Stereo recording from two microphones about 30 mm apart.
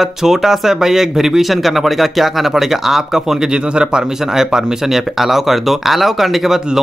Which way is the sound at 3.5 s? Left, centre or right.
Right.